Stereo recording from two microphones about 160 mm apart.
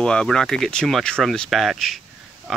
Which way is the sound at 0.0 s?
5° left (ahead or behind).